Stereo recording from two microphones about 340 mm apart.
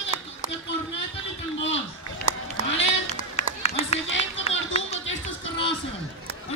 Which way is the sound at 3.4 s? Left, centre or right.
Centre.